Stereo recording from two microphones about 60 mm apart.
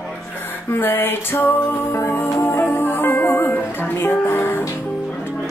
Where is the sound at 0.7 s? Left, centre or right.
Left.